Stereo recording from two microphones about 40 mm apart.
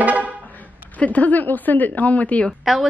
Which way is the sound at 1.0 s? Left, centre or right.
Left.